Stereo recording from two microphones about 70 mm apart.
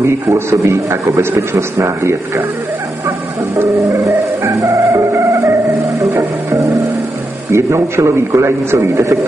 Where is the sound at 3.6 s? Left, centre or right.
Right.